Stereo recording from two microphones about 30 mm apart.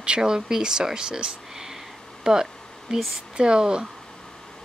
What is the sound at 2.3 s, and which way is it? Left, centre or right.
Speech, right.